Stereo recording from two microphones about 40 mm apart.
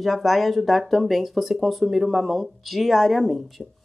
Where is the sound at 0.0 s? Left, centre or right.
Centre.